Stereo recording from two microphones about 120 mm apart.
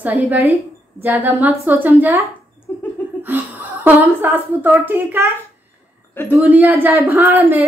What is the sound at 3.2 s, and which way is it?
A woman's voice, 15° right (ahead or behind).